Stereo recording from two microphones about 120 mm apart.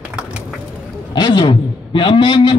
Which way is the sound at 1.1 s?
35° left (ahead or behind).